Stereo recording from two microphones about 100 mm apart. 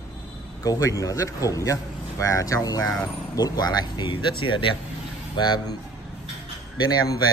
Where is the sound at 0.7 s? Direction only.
35° left (ahead or behind).